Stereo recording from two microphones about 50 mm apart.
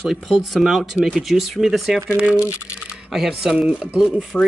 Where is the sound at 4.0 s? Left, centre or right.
Centre.